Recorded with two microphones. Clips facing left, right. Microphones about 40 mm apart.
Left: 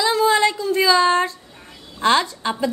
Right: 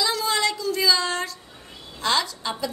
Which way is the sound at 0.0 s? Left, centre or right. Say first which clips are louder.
Left 7 dB; left.